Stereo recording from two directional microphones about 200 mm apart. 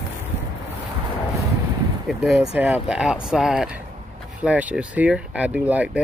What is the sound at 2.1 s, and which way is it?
Speech, centre (ahead or behind).